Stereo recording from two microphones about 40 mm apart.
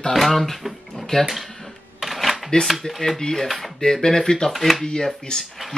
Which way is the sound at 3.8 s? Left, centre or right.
Centre.